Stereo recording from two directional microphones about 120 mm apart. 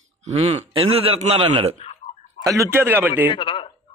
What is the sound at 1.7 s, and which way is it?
Tick-tock, 55° left (ahead or behind).